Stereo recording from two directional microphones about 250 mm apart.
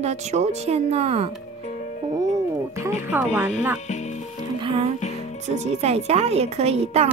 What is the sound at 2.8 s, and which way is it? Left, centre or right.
Speech, centre.